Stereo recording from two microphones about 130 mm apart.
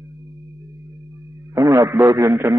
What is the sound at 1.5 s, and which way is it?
A man's voice, 25° right (ahead or behind).